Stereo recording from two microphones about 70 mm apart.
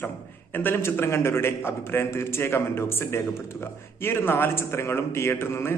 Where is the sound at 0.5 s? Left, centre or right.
Left.